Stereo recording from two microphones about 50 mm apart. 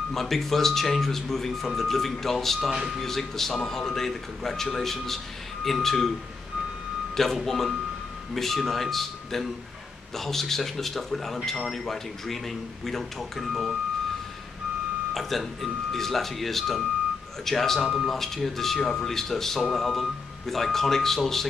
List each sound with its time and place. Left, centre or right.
0.1 s speech: centre
7.2 s speech: centre
15.1 s speech: centre